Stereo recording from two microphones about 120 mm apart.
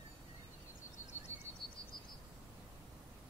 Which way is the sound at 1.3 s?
70° left (ahead or behind).